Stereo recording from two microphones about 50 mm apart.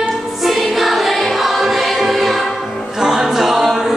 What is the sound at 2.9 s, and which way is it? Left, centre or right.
A capella, centre.